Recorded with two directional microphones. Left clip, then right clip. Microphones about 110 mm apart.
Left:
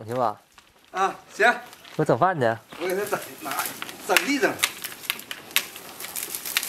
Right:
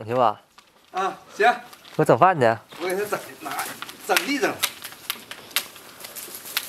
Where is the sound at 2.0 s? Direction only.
35° right (ahead or behind).